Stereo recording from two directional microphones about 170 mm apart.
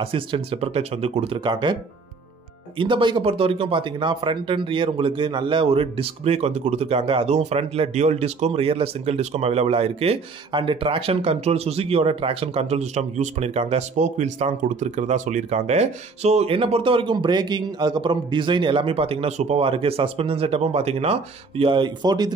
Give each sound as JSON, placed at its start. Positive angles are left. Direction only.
{"t": 0.0, "sound": "speech", "side_deg": -30}
{"t": 2.8, "sound": "speech", "side_deg": -30}